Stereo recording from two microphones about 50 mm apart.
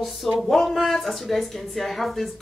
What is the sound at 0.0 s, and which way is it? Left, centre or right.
Speech, centre.